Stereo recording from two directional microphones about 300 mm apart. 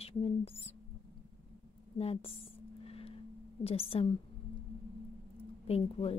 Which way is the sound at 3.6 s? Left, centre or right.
Centre.